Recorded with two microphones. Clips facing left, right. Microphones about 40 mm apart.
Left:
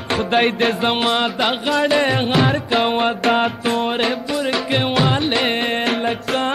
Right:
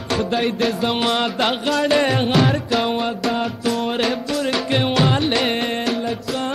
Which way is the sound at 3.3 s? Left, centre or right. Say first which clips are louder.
Left 4 dB; left.